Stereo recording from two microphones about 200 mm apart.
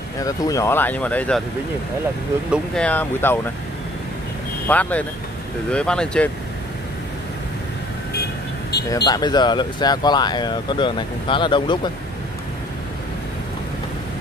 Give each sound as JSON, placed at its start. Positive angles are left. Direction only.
{"t": 0.2, "sound": "speech", "side_deg": 15}
{"t": 2.5, "sound": "speech", "side_deg": 5}
{"t": 4.6, "sound": "speech", "side_deg": 5}
{"t": 8.9, "sound": "speech", "side_deg": 20}